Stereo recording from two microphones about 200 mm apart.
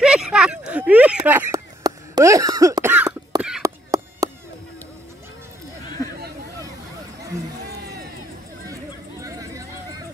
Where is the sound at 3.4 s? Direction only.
5° right (ahead or behind).